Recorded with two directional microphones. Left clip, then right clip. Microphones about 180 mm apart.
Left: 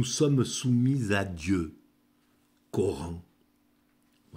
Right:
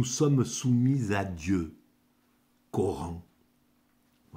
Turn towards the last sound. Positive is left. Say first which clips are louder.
# left 1 dB
turn(degrees=20)  # may be behind; listen again after turning